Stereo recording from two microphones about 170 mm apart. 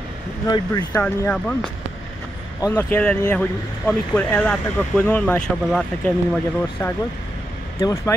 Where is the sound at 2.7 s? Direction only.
10° left (ahead or behind).